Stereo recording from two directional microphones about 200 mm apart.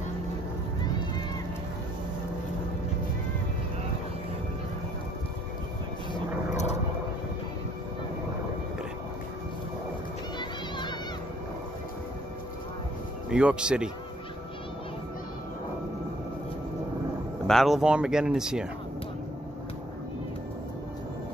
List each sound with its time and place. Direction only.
6.5 s vehicle: 35° left (ahead or behind)
13.3 s speech: 5° right (ahead or behind)
17.5 s speech: centre (ahead or behind)